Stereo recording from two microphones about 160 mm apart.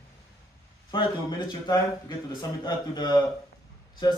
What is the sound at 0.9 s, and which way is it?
A man's voice, 30° left (ahead or behind).